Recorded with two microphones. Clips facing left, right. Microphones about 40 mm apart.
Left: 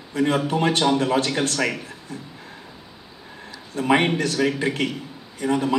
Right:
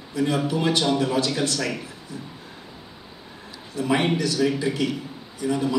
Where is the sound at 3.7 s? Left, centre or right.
Left.